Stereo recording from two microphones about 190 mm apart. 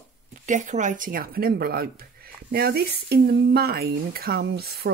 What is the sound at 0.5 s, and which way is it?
Speech, 40° right (ahead or behind).